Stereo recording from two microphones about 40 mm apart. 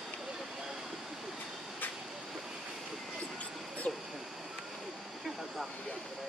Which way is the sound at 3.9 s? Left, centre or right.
Left.